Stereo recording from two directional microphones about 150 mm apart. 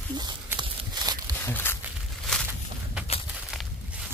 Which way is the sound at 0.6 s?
25° right (ahead or behind).